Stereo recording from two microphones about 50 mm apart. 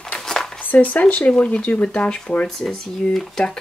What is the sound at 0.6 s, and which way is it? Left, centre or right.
Speech, left.